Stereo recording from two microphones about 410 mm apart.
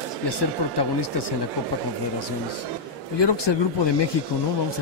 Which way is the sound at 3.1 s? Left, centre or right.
Left.